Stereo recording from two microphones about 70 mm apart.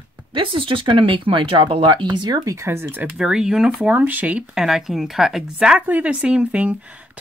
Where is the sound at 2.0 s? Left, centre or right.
Right.